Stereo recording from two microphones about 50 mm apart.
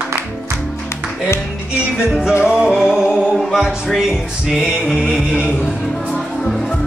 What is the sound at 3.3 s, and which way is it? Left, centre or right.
Music, centre.